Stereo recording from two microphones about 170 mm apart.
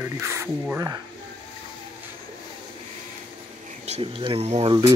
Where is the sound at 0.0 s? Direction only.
15° right (ahead or behind).